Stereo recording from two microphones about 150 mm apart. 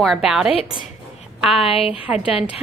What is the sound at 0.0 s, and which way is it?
Speech, centre (ahead or behind).